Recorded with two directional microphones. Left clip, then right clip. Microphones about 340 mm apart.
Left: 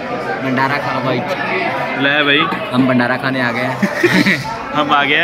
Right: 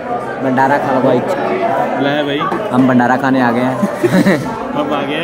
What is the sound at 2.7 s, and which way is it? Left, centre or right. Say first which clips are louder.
A man's voice: right 3 dB; centre.